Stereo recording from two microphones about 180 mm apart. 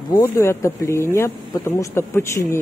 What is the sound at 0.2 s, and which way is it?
Speech, 15° left (ahead or behind).